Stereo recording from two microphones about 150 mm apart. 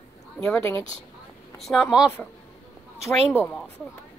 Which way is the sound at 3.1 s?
15° left (ahead or behind).